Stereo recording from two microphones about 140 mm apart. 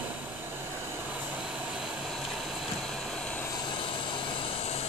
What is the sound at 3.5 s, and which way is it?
Vehicle, 30° left (ahead or behind).